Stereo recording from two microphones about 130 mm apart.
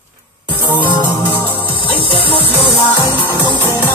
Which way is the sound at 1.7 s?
40° left (ahead or behind).